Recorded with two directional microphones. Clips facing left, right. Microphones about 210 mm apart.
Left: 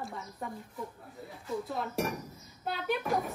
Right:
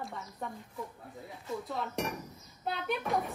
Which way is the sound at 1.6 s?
Centre (ahead or behind).